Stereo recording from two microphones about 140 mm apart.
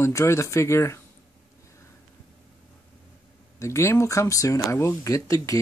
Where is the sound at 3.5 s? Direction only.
20° left (ahead or behind).